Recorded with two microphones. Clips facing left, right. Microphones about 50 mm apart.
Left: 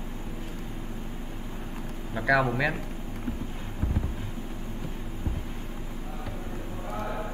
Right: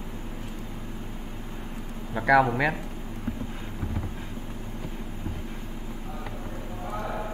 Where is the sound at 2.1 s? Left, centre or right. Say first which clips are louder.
Right 4 dB; centre.